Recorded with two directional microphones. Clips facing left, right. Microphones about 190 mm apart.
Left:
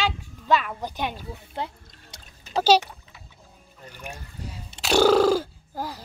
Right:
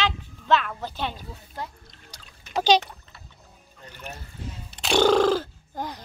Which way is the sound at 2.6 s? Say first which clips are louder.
Left 1 dB; 10° left (ahead or behind).